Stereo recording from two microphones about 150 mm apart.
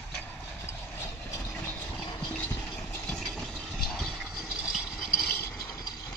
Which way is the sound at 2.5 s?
15° left (ahead or behind).